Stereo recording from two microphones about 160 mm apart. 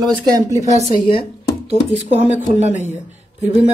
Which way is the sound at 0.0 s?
25° right (ahead or behind).